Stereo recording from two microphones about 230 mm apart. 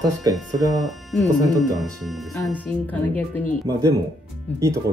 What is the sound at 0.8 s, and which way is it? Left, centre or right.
Speech, centre.